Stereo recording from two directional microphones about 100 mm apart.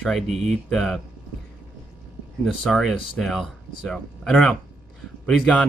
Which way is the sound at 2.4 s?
Centre (ahead or behind).